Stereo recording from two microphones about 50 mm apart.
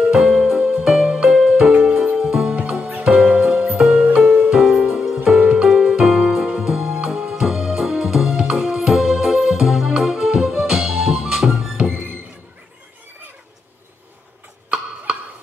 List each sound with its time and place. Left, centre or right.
0.0 s music: centre
2.9 s music: right
4.5 s music: centre